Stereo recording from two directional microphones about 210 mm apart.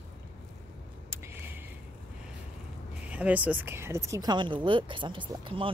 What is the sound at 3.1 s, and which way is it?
A woman's voice, 5° right (ahead or behind).